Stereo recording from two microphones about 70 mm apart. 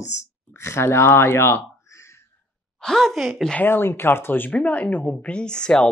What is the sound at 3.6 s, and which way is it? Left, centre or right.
Speech, left.